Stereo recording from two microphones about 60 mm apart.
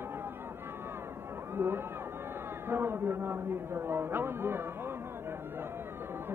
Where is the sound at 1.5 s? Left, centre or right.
Right.